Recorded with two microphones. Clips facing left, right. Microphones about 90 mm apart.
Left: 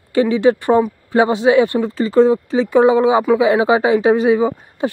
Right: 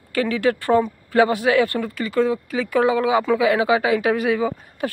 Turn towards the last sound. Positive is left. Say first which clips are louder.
# left 5 dB
turn(degrees=25)  # may be behind; listen again after turning